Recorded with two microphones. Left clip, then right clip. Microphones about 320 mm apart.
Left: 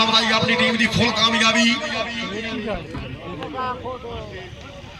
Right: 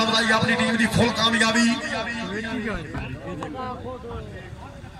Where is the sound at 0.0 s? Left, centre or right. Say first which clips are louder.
Left 3 dB; right.